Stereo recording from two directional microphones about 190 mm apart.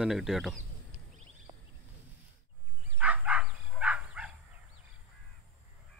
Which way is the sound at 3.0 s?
5° right (ahead or behind).